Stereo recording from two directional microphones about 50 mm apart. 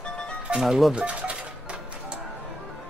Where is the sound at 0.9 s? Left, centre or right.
Right.